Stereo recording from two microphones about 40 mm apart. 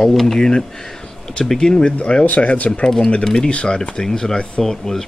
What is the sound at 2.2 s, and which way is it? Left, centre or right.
Speech, left.